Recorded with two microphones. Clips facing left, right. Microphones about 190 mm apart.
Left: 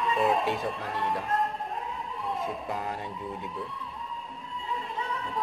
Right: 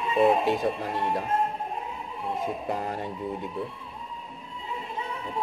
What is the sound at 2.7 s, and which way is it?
Speech, 35° right (ahead or behind).